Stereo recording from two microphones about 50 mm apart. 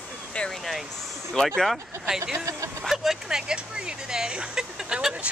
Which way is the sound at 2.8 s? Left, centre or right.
Centre.